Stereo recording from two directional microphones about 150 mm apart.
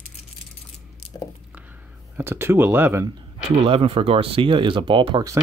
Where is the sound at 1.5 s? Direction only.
15° right (ahead or behind).